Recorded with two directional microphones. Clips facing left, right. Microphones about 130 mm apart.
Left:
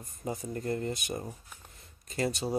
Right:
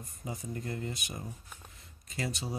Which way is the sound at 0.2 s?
40° left (ahead or behind).